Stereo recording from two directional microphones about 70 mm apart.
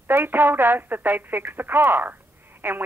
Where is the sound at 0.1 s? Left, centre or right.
Right.